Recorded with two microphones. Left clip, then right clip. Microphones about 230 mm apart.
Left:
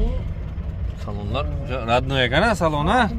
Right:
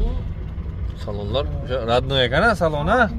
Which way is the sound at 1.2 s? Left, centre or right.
Centre.